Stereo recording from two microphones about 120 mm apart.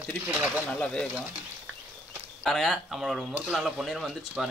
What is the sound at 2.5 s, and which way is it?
Speech, centre (ahead or behind).